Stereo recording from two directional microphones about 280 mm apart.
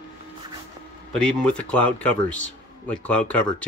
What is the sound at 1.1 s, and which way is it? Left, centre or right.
Speech, centre.